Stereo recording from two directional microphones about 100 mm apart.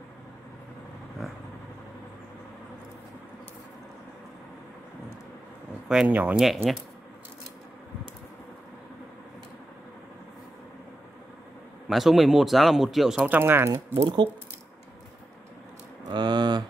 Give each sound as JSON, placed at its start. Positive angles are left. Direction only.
{"t": 5.9, "sound": "speech", "side_deg": -10}
{"t": 6.4, "sound": "speech", "side_deg": 0}
{"t": 11.9, "sound": "speech", "side_deg": 0}
{"t": 13.3, "sound": "speech", "side_deg": -20}
{"t": 14.0, "sound": "speech", "side_deg": -60}
{"t": 16.1, "sound": "a sound", "side_deg": -50}